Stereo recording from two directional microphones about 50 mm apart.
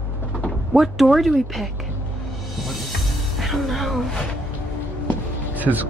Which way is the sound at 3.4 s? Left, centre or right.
Centre.